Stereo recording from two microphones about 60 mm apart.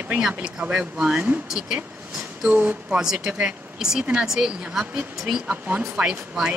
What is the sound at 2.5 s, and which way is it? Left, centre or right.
Speech, right.